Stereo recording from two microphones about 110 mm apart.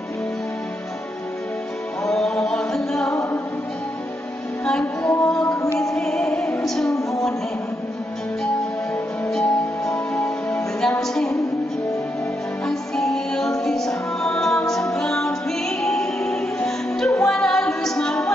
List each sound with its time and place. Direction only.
2.0 s music: 5° left (ahead or behind)
3.1 s music: 25° left (ahead or behind)
4.6 s music: 5° left (ahead or behind)
9.3 s music: 5° left (ahead or behind)
12.6 s music: 5° left (ahead or behind)